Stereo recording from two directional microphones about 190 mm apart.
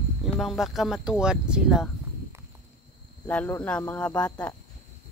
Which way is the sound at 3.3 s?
10° left (ahead or behind).